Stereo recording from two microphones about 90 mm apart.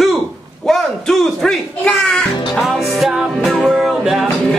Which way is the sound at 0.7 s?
5° left (ahead or behind).